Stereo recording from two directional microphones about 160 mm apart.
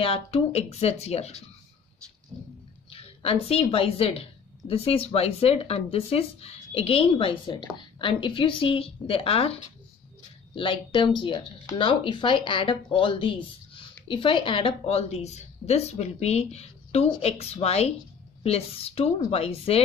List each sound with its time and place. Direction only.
0.0 s a woman's voice: 35° left (ahead or behind)
2.9 s a woman's voice: 35° left (ahead or behind)